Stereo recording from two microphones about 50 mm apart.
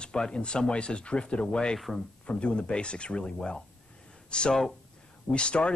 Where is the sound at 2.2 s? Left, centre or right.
Left.